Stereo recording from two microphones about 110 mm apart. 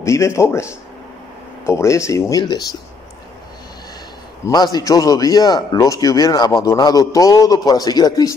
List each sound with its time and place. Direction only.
0.0 s speech: 25° left (ahead or behind)
1.7 s speech: 25° left (ahead or behind)
4.5 s a man's voice: 35° left (ahead or behind)